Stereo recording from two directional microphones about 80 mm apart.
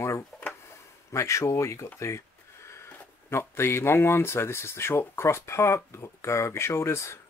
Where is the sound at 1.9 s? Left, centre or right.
Left.